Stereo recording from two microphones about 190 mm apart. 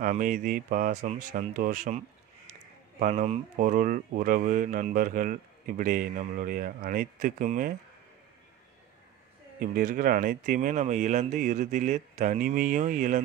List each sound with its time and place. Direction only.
0.0 s speech: 45° right (ahead or behind)
3.0 s speech: 40° right (ahead or behind)
9.6 s speech: 45° right (ahead or behind)